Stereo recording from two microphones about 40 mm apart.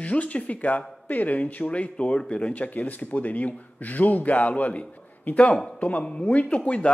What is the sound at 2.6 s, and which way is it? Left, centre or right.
Speech, left.